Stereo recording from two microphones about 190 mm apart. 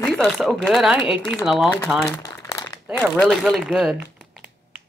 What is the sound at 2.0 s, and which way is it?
Crumpling, 15° left (ahead or behind).